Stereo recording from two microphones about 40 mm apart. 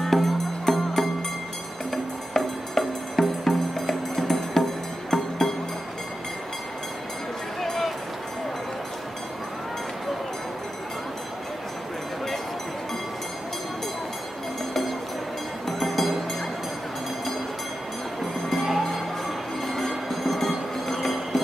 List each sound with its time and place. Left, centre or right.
0.0 s music: centre
7.6 s a sound: centre
15.8 s music: centre
18.5 s music: centre
19.6 s train: centre